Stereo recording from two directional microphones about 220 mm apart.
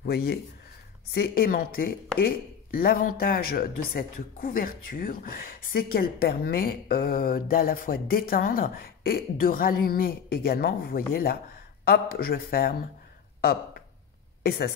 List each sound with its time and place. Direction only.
0.0 s speech: 45° left (ahead or behind)